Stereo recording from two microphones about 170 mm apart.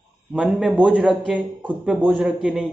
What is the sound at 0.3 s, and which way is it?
A man's voice, 5° right (ahead or behind).